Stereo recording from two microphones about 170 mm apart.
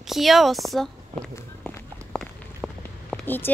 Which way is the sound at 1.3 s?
5° left (ahead or behind).